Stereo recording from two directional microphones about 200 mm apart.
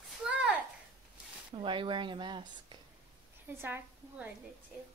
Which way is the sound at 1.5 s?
25° right (ahead or behind).